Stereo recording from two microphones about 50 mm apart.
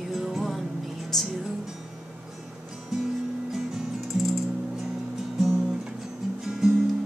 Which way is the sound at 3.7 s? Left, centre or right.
Centre.